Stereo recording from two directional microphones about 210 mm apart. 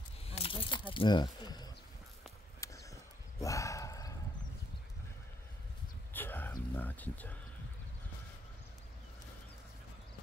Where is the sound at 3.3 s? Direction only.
15° left (ahead or behind).